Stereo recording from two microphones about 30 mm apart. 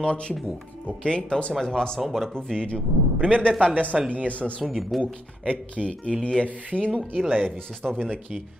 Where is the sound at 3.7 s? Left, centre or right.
Right.